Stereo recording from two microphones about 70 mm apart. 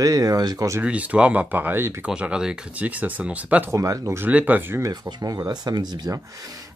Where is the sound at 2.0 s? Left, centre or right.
Centre.